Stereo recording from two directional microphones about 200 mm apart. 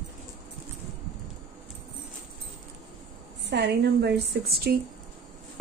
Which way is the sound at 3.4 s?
55° right (ahead or behind).